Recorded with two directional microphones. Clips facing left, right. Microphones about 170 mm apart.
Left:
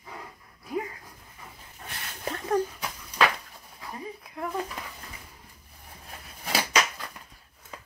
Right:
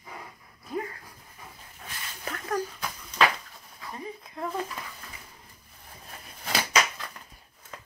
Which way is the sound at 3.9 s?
5° left (ahead or behind).